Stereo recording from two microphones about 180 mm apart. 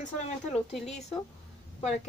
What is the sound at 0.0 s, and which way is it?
Speech, 40° left (ahead or behind).